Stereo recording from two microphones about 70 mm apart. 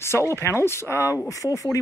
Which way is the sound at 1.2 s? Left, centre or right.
Left.